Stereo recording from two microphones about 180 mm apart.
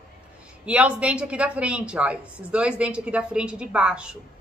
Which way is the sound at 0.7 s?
5° right (ahead or behind).